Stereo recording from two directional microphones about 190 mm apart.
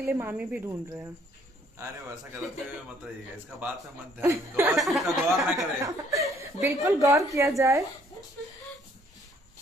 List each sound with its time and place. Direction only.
0.0 s a woman's voice: 10° right (ahead or behind)
3.4 s a woman's voice: 10° right (ahead or behind)
4.7 s speech: centre (ahead or behind)
5.5 s a woman's voice: 15° right (ahead or behind)